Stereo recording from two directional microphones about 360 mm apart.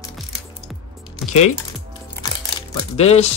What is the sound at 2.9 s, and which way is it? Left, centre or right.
Speech, centre.